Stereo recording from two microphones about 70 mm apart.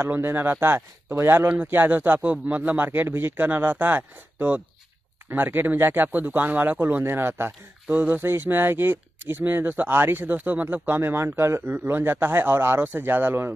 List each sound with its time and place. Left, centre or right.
0.0 s speech: right